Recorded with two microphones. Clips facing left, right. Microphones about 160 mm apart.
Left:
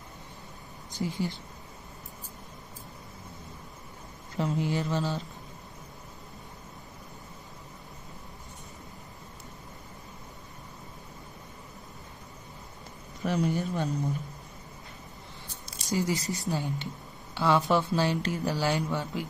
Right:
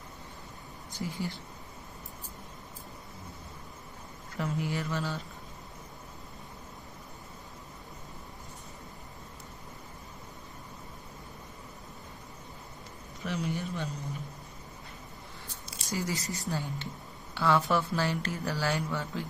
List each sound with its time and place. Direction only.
1.0 s speech: 20° left (ahead or behind)
4.4 s speech: 25° left (ahead or behind)
13.2 s a man's voice: 40° left (ahead or behind)
15.9 s speech: 20° left (ahead or behind)